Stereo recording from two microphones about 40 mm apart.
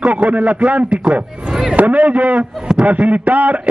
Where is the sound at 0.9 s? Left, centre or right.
Right.